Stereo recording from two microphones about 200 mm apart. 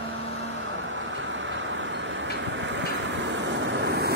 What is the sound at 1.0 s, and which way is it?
Vehicle, 70° right (ahead or behind).